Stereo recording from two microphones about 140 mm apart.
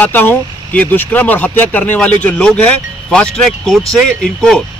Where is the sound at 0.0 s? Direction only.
15° left (ahead or behind).